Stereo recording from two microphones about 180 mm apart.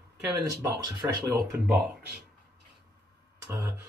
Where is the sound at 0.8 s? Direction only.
15° right (ahead or behind).